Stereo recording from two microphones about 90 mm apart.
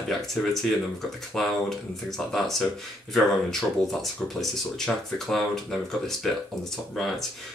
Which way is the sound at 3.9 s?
5° left (ahead or behind).